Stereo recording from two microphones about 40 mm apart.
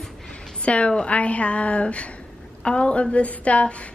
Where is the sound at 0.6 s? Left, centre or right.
Left.